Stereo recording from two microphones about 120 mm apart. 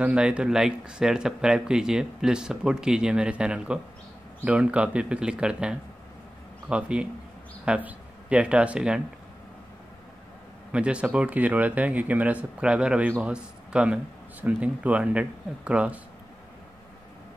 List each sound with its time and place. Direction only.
0.0 s speech: 10° right (ahead or behind)
10.7 s a man's voice: 10° right (ahead or behind)